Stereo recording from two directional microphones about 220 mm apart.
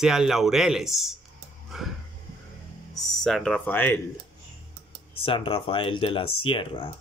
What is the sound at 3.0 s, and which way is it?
Speech, centre (ahead or behind).